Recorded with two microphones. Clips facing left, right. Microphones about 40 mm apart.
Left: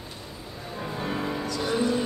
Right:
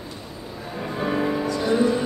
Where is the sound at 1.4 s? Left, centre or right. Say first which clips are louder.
Right 4 dB; right.